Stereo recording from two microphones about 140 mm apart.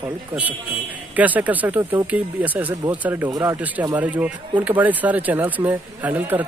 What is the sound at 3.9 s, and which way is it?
Speech, 10° right (ahead or behind).